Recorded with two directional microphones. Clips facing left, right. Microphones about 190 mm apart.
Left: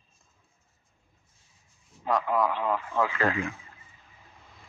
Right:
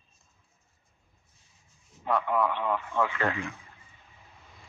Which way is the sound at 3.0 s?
35° left (ahead or behind).